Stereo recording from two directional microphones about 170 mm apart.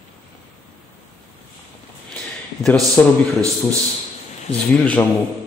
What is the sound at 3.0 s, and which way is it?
Speech, 10° left (ahead or behind).